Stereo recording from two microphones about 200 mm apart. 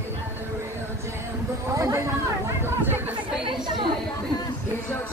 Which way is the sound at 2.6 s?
10° right (ahead or behind).